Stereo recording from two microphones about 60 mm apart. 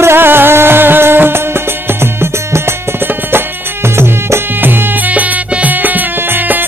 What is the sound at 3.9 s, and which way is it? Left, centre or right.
Music, right.